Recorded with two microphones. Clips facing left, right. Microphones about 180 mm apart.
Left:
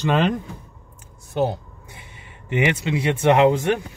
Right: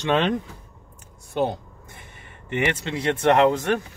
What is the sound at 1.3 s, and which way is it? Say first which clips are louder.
Speech: left 2 dB; 5° left (ahead or behind).